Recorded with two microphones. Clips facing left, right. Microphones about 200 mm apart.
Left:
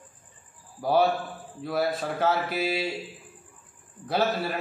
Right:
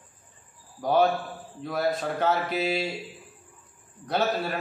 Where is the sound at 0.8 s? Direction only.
5° left (ahead or behind).